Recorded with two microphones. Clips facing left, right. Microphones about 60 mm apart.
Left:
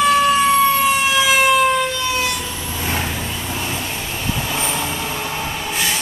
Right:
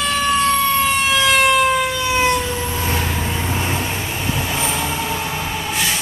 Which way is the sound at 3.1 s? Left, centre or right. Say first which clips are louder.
Right 3 dB; right.